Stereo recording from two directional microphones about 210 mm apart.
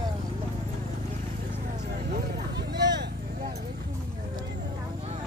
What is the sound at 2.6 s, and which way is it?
Vehicle, 55° right (ahead or behind).